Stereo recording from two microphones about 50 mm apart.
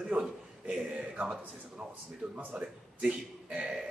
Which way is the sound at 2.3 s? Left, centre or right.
Right.